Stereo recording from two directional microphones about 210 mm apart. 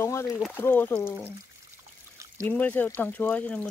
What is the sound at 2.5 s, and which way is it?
Speech, 10° left (ahead or behind).